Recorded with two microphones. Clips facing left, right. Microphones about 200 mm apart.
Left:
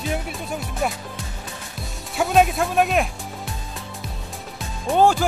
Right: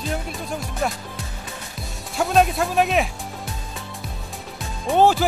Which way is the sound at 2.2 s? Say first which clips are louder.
Left 1 dB; centre (ahead or behind).